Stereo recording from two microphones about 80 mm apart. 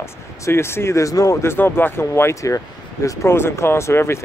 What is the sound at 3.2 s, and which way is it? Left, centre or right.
Speech, left.